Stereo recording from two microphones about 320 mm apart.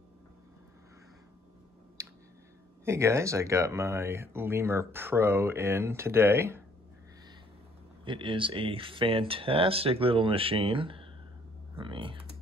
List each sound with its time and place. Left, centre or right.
2.0 s a sound: centre
2.8 s speech: centre
8.0 s speech: centre